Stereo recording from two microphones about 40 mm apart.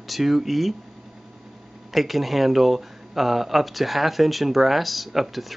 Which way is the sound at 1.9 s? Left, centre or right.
Centre.